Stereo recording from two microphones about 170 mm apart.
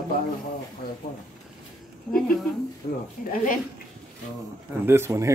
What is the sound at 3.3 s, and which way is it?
Speech, 50° left (ahead or behind).